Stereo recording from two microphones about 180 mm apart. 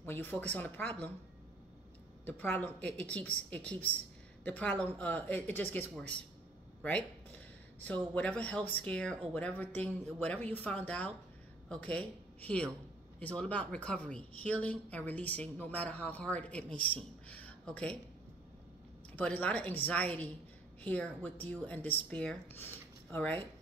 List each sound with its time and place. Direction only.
0.0 s a woman's voice: 10° left (ahead or behind)
2.2 s a woman's voice: 10° left (ahead or behind)
19.1 s a woman's voice: 10° left (ahead or behind)